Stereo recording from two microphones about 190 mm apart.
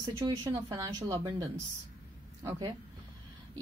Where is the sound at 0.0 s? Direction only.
25° right (ahead or behind).